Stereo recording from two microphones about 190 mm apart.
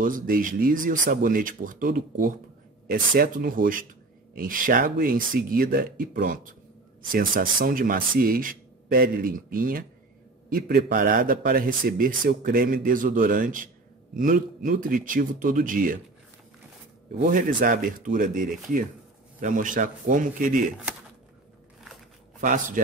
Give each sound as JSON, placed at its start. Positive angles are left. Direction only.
{"t": 0.0, "sound": "a man's voice", "side_deg": -45}
{"t": 17.3, "sound": "a man's voice", "side_deg": -45}